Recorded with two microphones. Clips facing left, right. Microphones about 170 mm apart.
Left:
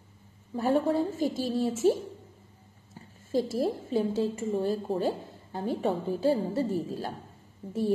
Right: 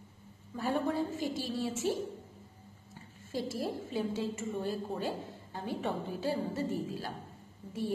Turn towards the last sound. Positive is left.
turn(degrees=40)  # may be behind; listen again after turning